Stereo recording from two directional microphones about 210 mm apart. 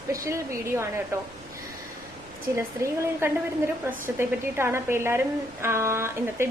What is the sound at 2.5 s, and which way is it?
A woman's voice, 15° right (ahead or behind).